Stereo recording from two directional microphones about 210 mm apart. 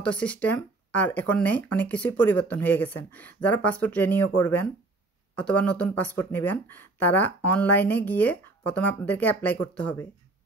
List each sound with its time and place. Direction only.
0.0 s speech: 5° left (ahead or behind)